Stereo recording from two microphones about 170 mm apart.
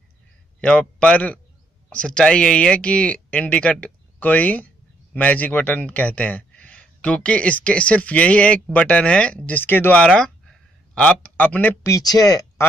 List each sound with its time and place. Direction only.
0.6 s a man's voice: 5° left (ahead or behind)